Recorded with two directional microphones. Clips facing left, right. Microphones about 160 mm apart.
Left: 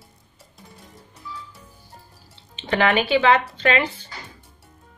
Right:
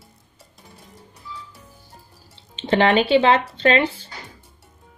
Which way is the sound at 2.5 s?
30° right (ahead or behind).